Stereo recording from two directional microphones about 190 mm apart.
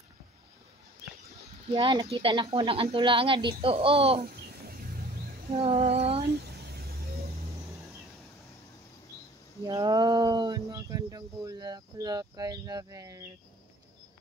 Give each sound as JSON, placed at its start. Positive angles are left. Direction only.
{"t": 1.7, "sound": "speech", "side_deg": -25}
{"t": 4.2, "sound": "a sound", "side_deg": -50}
{"t": 5.5, "sound": "female singing", "side_deg": -30}
{"t": 6.5, "sound": "vehicle", "side_deg": -55}
{"t": 9.6, "sound": "speech", "side_deg": -20}